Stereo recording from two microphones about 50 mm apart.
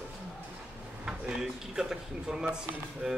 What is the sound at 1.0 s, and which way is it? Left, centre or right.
A man's voice, centre.